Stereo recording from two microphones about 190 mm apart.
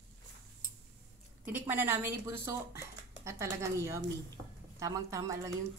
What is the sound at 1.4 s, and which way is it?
A woman's voice, 10° right (ahead or behind).